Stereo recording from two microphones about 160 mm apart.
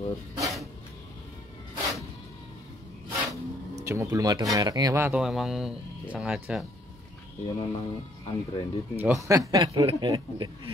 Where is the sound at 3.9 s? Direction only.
20° right (ahead or behind).